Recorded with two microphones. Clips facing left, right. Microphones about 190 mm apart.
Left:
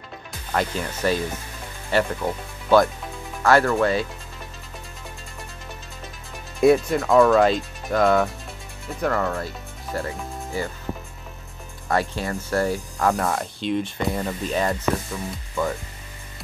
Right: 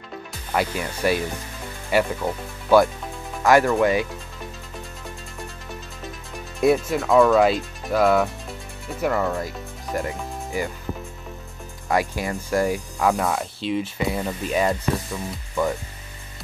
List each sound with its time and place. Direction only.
0.5 s speech: 10° right (ahead or behind)
6.6 s speech: centre (ahead or behind)
11.9 s speech: 10° right (ahead or behind)